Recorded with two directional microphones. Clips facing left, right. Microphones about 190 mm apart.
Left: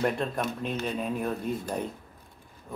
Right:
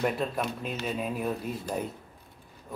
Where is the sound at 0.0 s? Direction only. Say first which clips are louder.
Left 1 dB; centre (ahead or behind).